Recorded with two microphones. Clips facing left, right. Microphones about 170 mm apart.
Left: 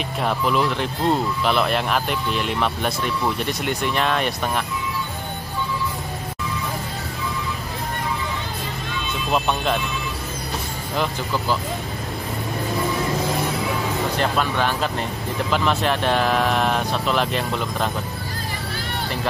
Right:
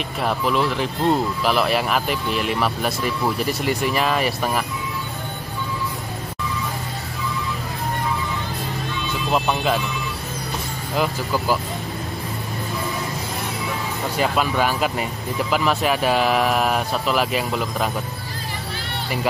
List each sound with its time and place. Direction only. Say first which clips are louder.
0.2 s speech: even; centre (ahead or behind)
9.3 s speech: right 1 dB; centre (ahead or behind)
14.1 s speech: right 5 dB; 5° right (ahead or behind)